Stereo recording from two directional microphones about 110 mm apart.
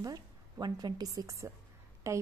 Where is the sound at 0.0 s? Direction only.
35° right (ahead or behind).